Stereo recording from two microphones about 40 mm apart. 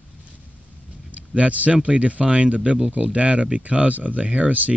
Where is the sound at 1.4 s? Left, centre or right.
Right.